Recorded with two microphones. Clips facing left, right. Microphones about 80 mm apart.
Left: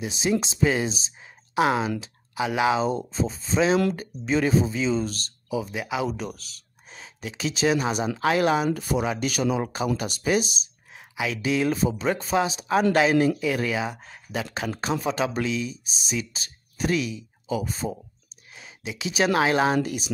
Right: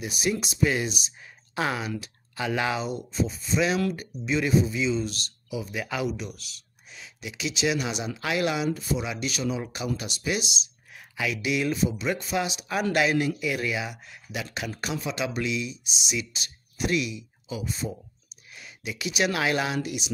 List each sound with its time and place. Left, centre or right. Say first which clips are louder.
0.0 s speech: left 3 dB; left
2.8 s speech: left 4 dB; left
8.7 s speech: left 4 dB; left
11.1 s speech: left 3 dB; left
18.5 s speech: left 1 dB; left